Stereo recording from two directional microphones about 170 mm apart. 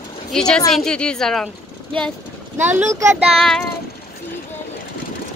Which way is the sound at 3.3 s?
Centre (ahead or behind).